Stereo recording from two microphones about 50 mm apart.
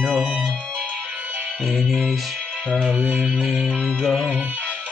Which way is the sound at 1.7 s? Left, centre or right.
Centre.